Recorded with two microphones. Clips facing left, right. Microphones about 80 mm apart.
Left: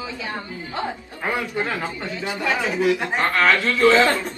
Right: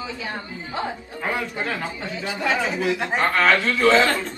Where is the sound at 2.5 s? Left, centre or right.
Centre.